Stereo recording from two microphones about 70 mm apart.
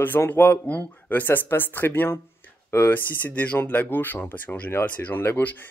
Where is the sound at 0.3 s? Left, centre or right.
Left.